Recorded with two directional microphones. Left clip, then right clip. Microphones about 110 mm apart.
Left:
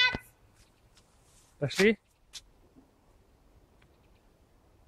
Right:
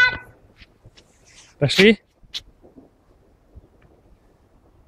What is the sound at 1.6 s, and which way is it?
Speech, 30° right (ahead or behind).